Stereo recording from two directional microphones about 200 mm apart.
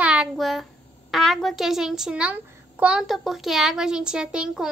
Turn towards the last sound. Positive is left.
turn(degrees=-5)  # may be behind; listen again after turning